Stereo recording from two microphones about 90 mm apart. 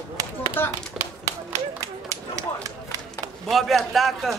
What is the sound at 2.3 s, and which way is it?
Speech, 40° right (ahead or behind).